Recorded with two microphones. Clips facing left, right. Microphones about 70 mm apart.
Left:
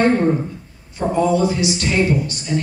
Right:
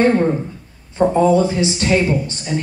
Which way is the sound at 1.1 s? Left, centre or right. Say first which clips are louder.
Right 1 dB; right.